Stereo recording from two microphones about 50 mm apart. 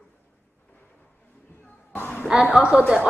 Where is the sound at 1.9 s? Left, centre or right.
Left.